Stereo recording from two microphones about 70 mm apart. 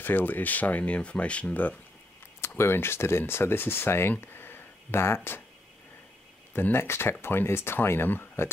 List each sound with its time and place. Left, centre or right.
0.0 s speech: left
2.4 s speech: left
4.2 s a sound: left
6.5 s speech: left